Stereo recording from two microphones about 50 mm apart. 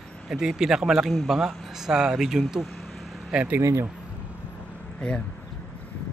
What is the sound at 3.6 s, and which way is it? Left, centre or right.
Speech, right.